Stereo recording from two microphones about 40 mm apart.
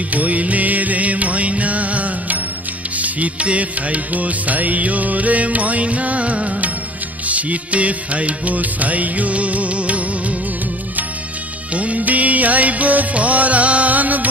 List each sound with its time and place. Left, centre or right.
0.1 s music: right
11.7 s music: right